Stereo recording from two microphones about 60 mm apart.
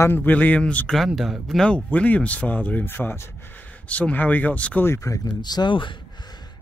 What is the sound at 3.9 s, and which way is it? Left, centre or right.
Speech, left.